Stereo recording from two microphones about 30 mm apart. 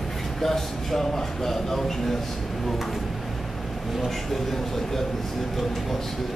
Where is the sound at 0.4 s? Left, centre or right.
Centre.